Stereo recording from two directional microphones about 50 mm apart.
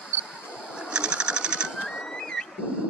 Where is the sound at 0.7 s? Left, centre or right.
Centre.